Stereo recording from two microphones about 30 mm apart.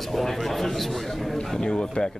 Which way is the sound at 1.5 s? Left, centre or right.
Left.